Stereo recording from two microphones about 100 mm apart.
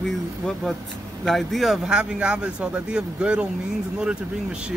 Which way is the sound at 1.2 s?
Centre (ahead or behind).